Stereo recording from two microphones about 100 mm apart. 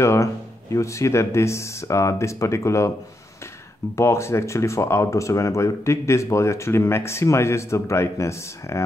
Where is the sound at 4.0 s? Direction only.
30° left (ahead or behind).